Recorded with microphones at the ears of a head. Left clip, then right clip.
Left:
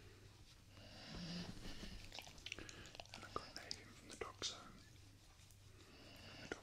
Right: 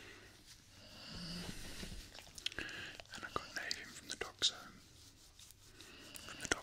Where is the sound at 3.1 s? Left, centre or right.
Right.